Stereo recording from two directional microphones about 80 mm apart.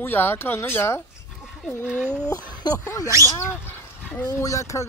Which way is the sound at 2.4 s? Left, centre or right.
Left.